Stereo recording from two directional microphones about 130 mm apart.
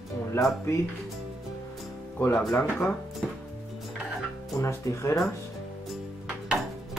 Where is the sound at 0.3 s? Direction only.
20° left (ahead or behind).